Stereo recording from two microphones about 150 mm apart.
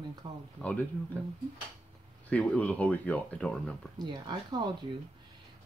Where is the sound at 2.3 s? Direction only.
10° left (ahead or behind).